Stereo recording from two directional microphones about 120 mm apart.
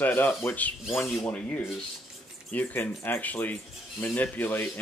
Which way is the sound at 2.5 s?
15° left (ahead or behind).